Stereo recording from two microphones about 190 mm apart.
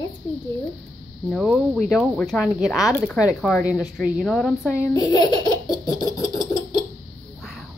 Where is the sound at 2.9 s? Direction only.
10° left (ahead or behind).